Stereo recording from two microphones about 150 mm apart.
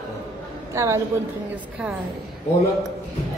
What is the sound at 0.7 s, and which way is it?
Speech, 20° right (ahead or behind).